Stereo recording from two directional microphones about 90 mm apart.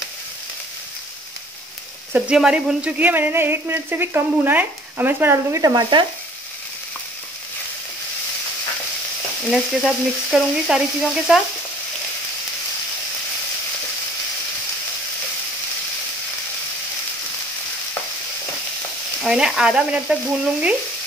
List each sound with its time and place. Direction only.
2.3 s speech: 5° right (ahead or behind); by 5.6 s 25° right (ahead or behind)
5.6 s stir: 45° right (ahead or behind)
9.5 s speech: centre (ahead or behind)
19.2 s frying: 5° right (ahead or behind)